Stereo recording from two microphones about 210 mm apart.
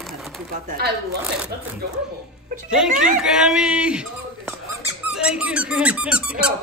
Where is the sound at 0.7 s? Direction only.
50° right (ahead or behind).